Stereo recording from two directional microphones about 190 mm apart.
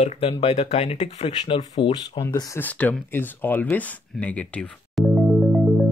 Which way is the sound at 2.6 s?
10° left (ahead or behind).